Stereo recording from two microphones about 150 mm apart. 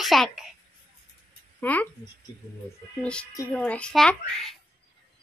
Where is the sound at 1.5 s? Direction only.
10° left (ahead or behind).